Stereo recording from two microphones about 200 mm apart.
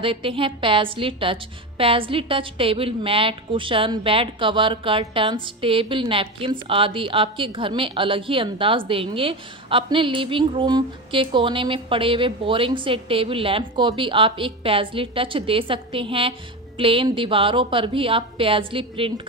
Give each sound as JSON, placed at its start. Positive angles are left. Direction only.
{"t": 0.0, "sound": "a woman's voice", "side_deg": -25}